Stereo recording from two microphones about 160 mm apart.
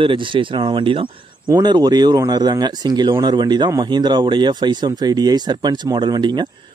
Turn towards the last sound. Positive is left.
turn(degrees=-30)  # may be behind; listen again after turning